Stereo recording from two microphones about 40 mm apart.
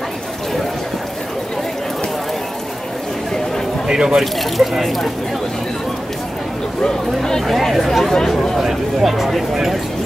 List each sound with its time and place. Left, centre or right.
3.8 s speech: centre
4.2 s speech: centre
7.4 s speech: centre
8.1 s speech: centre
8.5 s speech: centre